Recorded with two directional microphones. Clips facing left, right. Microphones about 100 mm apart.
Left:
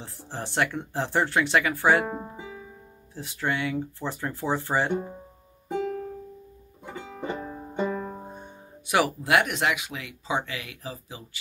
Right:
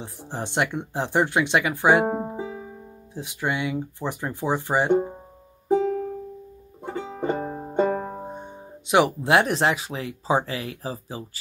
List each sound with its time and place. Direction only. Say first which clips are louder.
0.0 s speech: right 4 dB; 20° right (ahead or behind)
2.0 s music: right 8 dB; 40° right (ahead or behind)
3.2 s speech: right 2 dB; 15° right (ahead or behind)
6.8 s music: right 7 dB; 40° right (ahead or behind)
8.2 s speech: right 6 dB; 20° right (ahead or behind)